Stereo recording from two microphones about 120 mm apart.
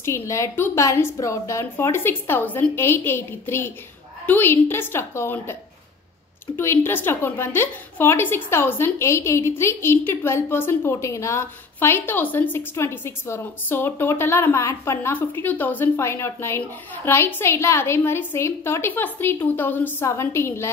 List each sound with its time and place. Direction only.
0.0 s a woman's voice: 25° left (ahead or behind)